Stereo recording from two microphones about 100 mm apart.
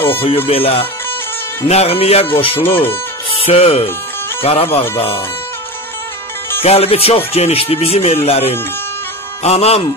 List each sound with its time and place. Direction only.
0.5 s speech: 75° left (ahead or behind)
1.6 s speech: 85° left; by 2.8 s 65° left (ahead or behind)
3.4 s speech: 85° left
4.4 s speech: 70° left (ahead or behind)
6.6 s speech: 85° left